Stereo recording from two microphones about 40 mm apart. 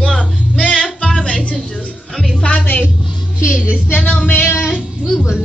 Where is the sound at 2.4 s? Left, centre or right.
Left.